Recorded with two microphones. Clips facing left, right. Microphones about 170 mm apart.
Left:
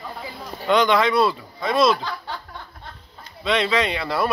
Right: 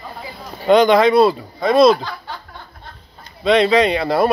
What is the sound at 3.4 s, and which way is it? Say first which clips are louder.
Speech: right 8 dB; 35° right (ahead or behind).